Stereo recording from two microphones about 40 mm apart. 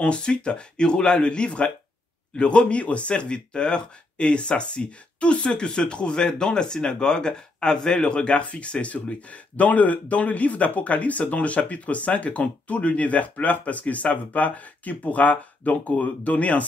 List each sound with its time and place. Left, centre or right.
0.0 s speech: left